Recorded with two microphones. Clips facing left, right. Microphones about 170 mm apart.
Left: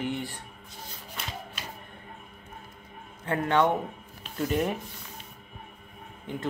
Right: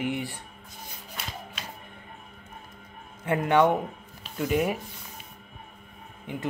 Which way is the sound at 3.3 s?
15° right (ahead or behind).